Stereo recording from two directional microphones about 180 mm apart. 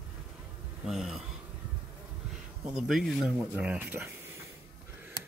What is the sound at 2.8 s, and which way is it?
Speech, centre (ahead or behind).